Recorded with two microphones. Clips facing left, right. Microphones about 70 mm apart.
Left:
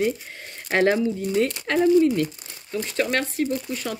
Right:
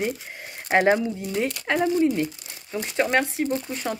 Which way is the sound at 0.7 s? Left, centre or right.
Centre.